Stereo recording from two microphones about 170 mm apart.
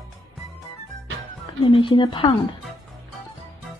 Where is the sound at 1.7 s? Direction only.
30° left (ahead or behind).